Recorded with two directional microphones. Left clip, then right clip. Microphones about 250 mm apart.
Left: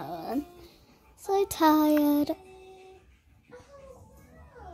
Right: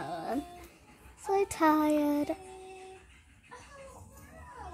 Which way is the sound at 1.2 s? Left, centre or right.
Left.